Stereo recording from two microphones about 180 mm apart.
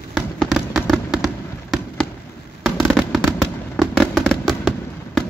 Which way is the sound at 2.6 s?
Centre (ahead or behind).